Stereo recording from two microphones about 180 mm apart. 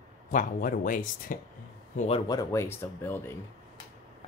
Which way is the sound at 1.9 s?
30° left (ahead or behind).